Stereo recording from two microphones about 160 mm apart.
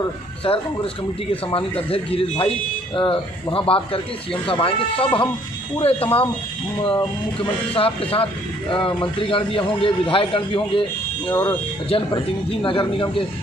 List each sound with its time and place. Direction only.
0.5 s a man's voice: 35° left (ahead or behind)